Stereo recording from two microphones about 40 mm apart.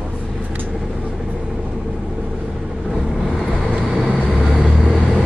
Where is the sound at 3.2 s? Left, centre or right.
Centre.